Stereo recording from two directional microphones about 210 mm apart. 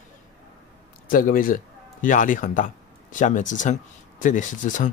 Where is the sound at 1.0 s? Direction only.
40° left (ahead or behind).